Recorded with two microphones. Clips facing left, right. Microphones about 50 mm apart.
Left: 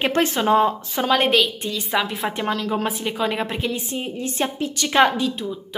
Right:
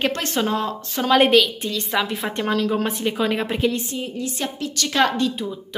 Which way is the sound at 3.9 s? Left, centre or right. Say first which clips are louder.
Left 1 dB; left.